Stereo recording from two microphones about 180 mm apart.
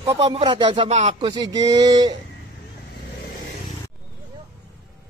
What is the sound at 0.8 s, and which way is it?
Speech, 40° right (ahead or behind).